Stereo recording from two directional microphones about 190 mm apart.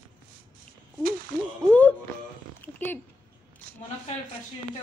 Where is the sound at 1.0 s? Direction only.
45° right (ahead or behind).